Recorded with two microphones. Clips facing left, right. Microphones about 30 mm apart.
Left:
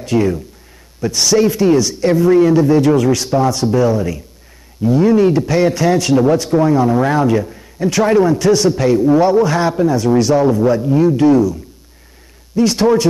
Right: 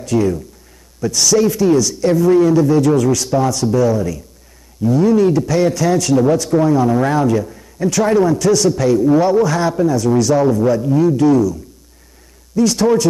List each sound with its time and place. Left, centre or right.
0.0 s a man's voice: left
12.5 s a man's voice: left